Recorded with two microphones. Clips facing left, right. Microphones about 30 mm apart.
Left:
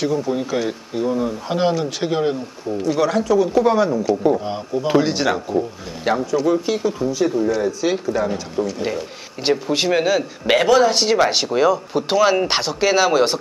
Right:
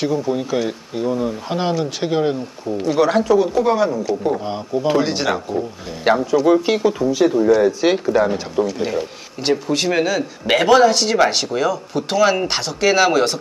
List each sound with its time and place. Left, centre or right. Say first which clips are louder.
0.0 s speech: right 1 dB; centre
3.1 s speech: right 2 dB; centre
3.5 s speech: left 1 dB; centre
6.1 s speech: right 4 dB; right
7.3 s speech: right 5 dB; centre
7.6 s speech: right 4 dB; right
9.4 s speech: even; centre
12.4 s speech: left 2 dB; centre
12.8 s speech: right 2 dB; centre